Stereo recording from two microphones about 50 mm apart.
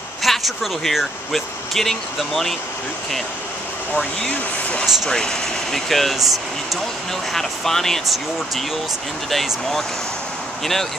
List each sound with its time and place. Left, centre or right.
0.2 s speech: centre
4.3 s speech: left
5.1 s speech: centre
7.3 s speech: centre
10.6 s speech: centre